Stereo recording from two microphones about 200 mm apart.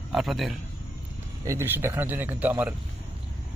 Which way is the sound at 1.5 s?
10° right (ahead or behind).